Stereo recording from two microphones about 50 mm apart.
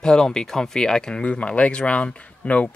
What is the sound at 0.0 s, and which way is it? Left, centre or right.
Speech, centre.